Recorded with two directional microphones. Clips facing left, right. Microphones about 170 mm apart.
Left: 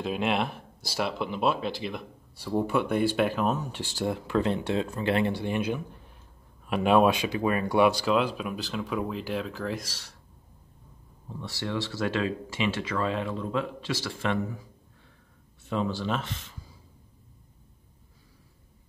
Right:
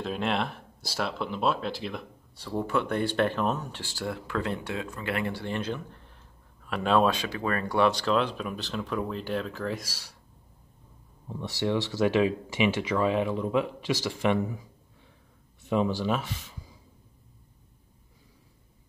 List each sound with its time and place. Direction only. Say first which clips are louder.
0.0 s speech: left 2 dB; 5° left (ahead or behind)
3.8 s speech: left 4 dB; 20° left (ahead or behind); by 10.1 s 5° right (ahead or behind)
11.2 s speech: right 5 dB; 20° right (ahead or behind)
15.6 s speech: right 3 dB; 15° right (ahead or behind)